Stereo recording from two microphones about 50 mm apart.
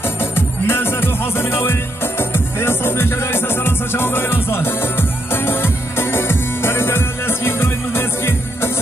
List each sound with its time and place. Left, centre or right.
0.2 s music: left